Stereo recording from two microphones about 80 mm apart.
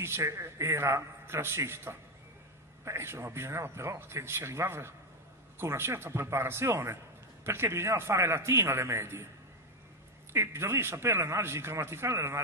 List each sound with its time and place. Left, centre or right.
0.0 s a man's voice: right
10.3 s a man's voice: right